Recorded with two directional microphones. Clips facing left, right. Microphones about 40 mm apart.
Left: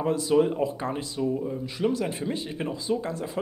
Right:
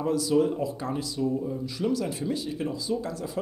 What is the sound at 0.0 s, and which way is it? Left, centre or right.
Speech, left.